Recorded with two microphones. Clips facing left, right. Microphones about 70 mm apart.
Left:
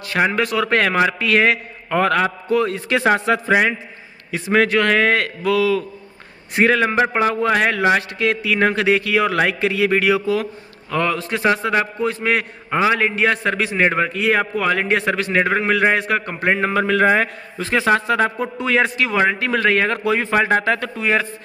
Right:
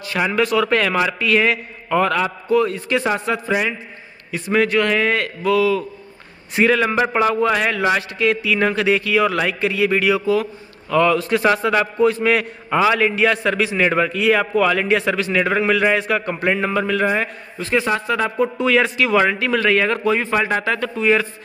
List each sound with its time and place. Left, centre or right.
0.3 s a man's voice: left
4.3 s a man's voice: left
6.5 s a man's voice: left
10.9 s a man's voice: left
11.3 s a man's voice: centre; by 16.7 s left
16.7 s a man's voice: left